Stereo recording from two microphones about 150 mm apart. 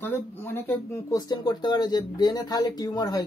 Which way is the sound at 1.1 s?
30° left (ahead or behind).